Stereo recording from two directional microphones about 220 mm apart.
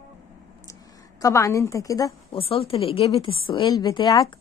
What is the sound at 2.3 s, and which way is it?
A woman's voice, 25° left (ahead or behind).